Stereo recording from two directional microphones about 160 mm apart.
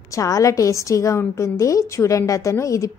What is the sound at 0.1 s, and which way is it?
A woman's voice, 20° left (ahead or behind).